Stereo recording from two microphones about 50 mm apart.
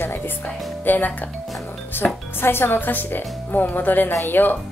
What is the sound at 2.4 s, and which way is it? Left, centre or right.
Speech, left.